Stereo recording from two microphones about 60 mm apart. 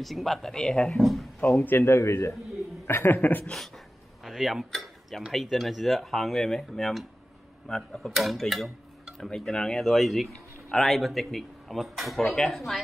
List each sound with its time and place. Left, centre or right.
0.0 s speech: centre
1.4 s speech: left
3.1 s speech: left
3.5 s a sound: centre
5.3 s speech: centre
10.7 s a man's voice: centre
11.0 s speech: centre
12.4 s speech: centre